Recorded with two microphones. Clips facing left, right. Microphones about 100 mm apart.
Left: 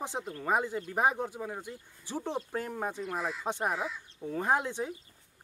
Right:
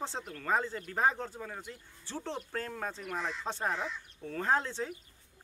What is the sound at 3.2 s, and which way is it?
Speech, 5° left (ahead or behind).